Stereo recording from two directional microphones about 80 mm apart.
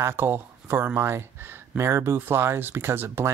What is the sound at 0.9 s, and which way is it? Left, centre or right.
Speech, right.